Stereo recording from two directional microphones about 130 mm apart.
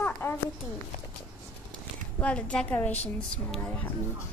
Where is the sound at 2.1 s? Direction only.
10° left (ahead or behind).